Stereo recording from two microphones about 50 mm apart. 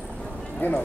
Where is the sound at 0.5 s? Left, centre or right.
Left.